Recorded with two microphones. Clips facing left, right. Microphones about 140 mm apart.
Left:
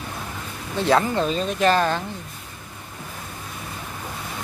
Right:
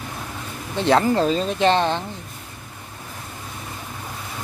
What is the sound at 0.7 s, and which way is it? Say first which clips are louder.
Speech: right 2 dB; 25° right (ahead or behind).